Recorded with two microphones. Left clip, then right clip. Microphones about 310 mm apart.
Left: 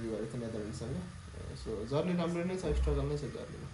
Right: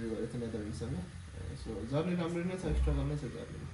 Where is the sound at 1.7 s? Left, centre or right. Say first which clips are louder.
Left 3 dB; centre.